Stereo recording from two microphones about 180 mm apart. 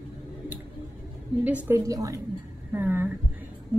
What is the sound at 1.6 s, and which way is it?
A woman's voice, 15° right (ahead or behind).